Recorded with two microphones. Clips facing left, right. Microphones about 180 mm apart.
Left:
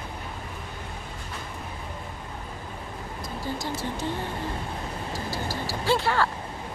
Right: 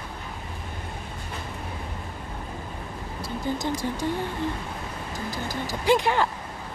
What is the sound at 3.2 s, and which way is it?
Speech, 20° right (ahead or behind).